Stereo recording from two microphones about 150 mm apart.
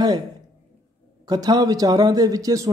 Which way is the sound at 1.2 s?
25° right (ahead or behind).